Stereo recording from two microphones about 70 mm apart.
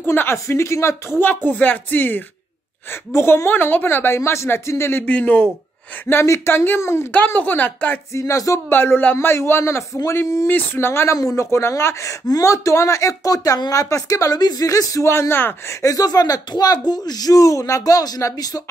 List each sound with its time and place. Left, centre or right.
0.0 s a woman's voice: left
0.5 s speech: left
1.2 s a woman's voice: left
5.0 s speech: left
6.2 s a woman's voice: left
7.1 s speech: left
8.1 s speech: left
8.6 s a woman's voice: left
10.5 s a woman's voice: left
11.1 s speech: left
15.8 s speech: left